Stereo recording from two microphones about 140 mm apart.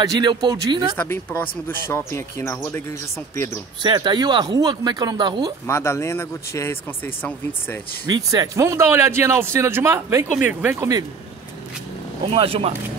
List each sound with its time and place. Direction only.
0.0 s speech: 30° right (ahead or behind)
0.9 s speech: 15° left (ahead or behind)
3.8 s speech: 30° right (ahead or behind)
5.7 s speech: 20° left (ahead or behind)
8.1 s a man's voice: 25° right (ahead or behind)
12.4 s speech: 40° right (ahead or behind)